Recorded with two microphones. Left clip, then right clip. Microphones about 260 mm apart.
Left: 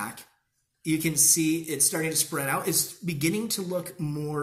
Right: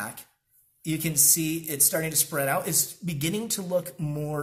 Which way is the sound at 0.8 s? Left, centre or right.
Right.